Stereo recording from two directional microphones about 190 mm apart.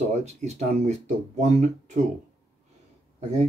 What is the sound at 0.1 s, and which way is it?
Speech, 35° right (ahead or behind).